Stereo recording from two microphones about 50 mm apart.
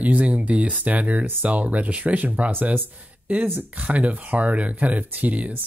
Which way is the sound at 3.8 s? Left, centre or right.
Right.